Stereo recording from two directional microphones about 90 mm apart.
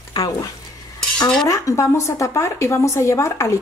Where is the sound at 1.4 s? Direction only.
35° left (ahead or behind).